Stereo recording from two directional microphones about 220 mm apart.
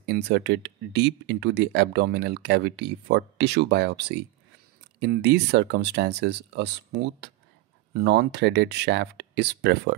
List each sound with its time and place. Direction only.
0.0 s speech: 50° right (ahead or behind)